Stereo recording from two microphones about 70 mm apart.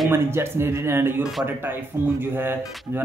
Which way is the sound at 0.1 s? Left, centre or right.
Right.